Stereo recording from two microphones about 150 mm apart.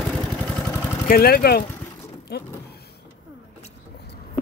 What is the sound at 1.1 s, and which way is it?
Speech, 80° left.